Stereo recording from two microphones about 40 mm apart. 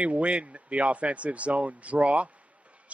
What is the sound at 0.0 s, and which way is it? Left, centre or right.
A child's voice, right.